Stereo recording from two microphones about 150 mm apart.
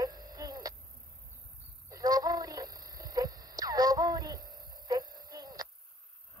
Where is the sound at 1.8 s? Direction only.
25° right (ahead or behind).